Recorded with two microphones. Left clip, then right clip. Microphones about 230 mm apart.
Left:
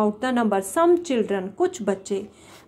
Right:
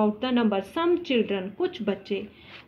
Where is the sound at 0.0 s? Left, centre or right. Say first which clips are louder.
Left 2 dB; left.